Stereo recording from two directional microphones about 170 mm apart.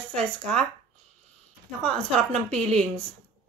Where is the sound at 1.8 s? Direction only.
5° left (ahead or behind).